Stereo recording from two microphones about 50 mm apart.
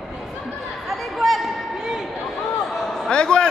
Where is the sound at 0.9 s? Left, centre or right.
Centre.